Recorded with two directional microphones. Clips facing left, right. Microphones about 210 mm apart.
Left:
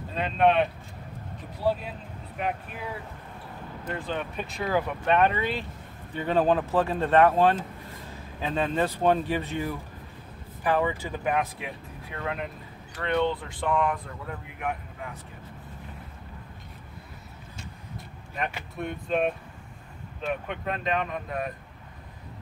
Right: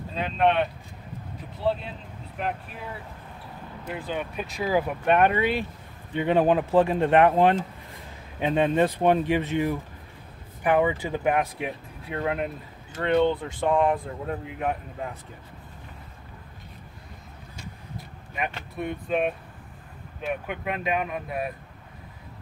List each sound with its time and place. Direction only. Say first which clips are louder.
0.1 s speech: left 1 dB; centre (ahead or behind); by 15.0 s 30° right (ahead or behind)
18.8 s speech: right 1 dB; 5° right (ahead or behind)